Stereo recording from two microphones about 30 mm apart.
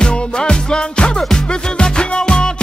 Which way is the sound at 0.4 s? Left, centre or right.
Left.